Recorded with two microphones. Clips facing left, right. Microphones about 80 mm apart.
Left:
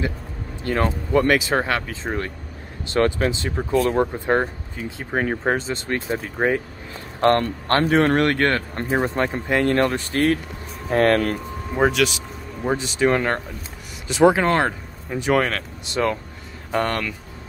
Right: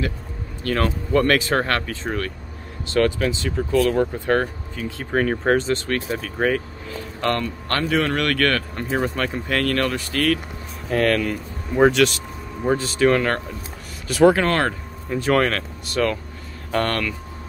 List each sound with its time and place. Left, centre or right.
0.7 s speech: left
3.2 s speech: left; by 5.9 s centre
5.9 s speech: left
7.2 s a man's voice: left
11.8 s speech: centre
12.6 s speech: centre